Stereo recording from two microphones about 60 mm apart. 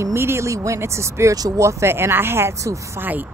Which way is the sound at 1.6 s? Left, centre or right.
Right.